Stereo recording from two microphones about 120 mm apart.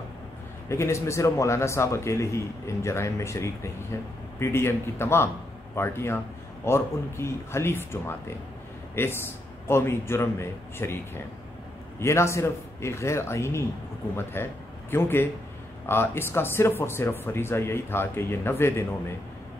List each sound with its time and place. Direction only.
0.7 s speech: 25° left (ahead or behind)